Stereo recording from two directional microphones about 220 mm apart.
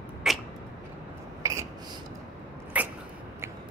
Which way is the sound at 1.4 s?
15° right (ahead or behind).